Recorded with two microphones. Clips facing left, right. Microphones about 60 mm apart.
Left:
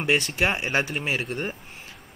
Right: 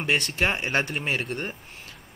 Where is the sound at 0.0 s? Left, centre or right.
Centre.